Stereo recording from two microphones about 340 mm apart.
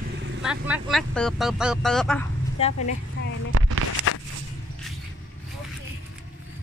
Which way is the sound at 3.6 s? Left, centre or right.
Right.